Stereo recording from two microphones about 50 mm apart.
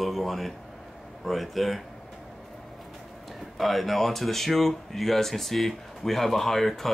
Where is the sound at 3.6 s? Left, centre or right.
Centre.